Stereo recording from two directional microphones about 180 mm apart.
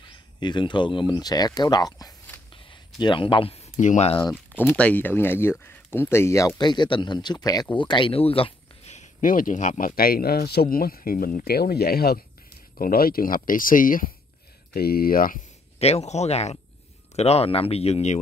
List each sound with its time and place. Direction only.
0.4 s speech: 25° left (ahead or behind)
4.3 s speech: 10° left (ahead or behind); by 15.4 s 50° left (ahead or behind)
15.8 s speech: 35° left (ahead or behind)